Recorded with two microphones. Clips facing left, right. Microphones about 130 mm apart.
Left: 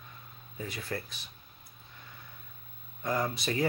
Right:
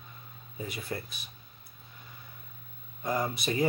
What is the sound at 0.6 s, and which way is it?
Speech, 15° right (ahead or behind).